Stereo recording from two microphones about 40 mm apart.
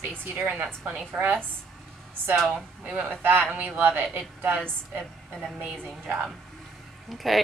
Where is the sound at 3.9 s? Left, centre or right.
Right.